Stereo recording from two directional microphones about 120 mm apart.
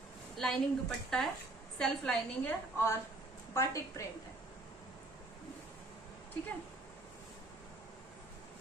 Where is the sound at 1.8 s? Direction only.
5° left (ahead or behind).